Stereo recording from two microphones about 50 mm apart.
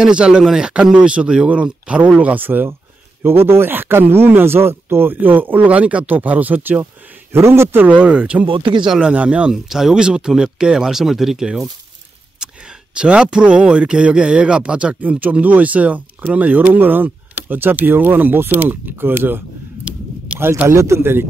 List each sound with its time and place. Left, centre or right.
0.0 s speech: centre; by 2.7 s right
3.2 s speech: right
7.3 s speech: right
8.0 s speech: right
8.8 s speech: centre
9.1 s speech: right
9.5 s speech: centre
12.9 s speech: centre
15.0 s speech: right
20.6 s a man's voice: right
21.0 s speech: right